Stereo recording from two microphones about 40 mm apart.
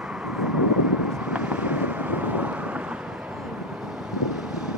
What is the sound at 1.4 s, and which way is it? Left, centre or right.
Vehicle, right.